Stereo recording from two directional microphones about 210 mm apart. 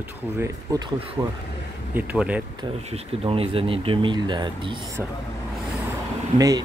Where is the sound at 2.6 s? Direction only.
30° right (ahead or behind).